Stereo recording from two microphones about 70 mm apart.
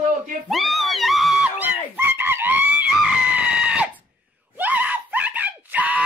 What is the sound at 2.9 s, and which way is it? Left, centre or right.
Screaming, centre.